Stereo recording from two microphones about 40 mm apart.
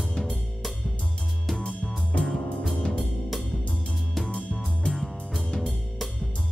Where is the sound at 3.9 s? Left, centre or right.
Centre.